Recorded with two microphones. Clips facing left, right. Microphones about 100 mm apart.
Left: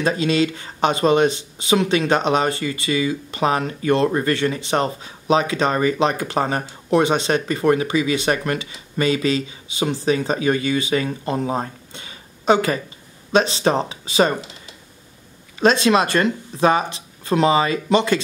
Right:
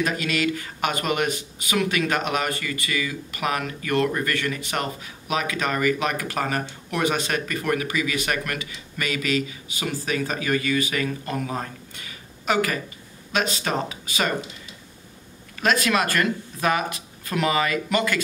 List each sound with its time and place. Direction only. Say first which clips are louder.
0.0 s speech: left 5 dB; 25° left (ahead or behind)
15.6 s speech: left 6 dB; 25° left (ahead or behind)